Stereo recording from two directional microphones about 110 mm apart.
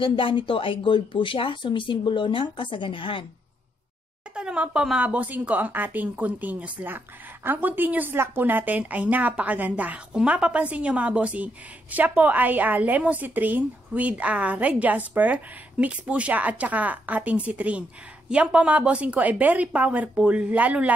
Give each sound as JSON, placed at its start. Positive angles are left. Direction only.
{"t": 0.0, "sound": "speech", "side_deg": 50}
{"t": 4.4, "sound": "a woman's voice", "side_deg": -10}